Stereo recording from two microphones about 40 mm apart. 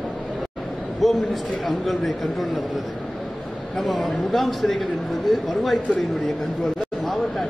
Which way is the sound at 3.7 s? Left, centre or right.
Centre.